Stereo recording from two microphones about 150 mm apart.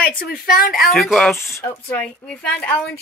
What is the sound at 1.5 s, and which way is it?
Speech, 15° left (ahead or behind).